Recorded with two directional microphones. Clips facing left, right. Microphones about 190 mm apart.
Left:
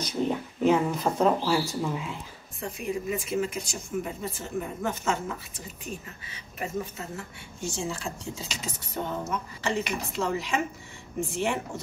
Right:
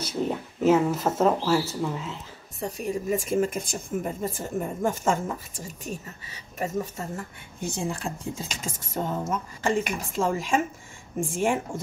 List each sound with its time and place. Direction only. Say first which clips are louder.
0.0 s speech: even; 5° right (ahead or behind)
2.6 s speech: right 2 dB; 40° right (ahead or behind)